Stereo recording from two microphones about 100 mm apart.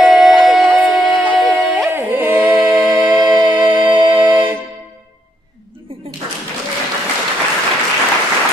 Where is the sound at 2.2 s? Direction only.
20° right (ahead or behind).